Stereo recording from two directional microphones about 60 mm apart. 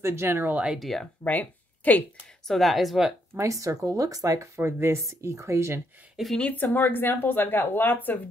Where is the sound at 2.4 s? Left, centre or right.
Centre.